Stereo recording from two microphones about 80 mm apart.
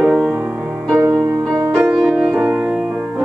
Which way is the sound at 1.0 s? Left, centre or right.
Right.